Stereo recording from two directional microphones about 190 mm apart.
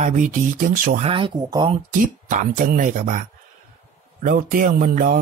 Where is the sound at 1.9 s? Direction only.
45° right (ahead or behind).